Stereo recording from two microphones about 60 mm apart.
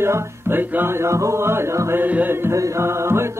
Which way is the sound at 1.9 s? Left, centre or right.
Right.